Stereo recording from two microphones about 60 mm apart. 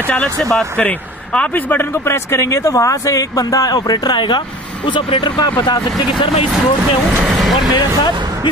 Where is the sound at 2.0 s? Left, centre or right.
Left.